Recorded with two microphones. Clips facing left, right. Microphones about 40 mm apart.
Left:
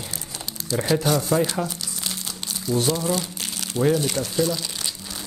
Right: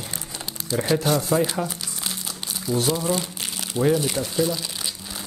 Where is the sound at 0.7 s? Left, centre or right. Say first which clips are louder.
Even; centre.